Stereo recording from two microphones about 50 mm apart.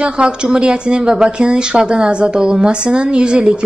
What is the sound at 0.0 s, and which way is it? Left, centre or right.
A woman's voice, centre.